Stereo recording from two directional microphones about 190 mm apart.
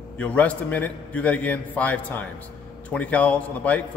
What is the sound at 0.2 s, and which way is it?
A man's voice, 5° left (ahead or behind).